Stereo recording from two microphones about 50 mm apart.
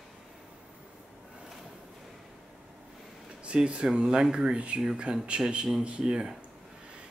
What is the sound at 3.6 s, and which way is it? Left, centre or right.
Speech, right.